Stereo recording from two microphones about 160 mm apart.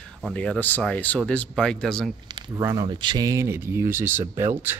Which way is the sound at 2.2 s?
25° right (ahead or behind).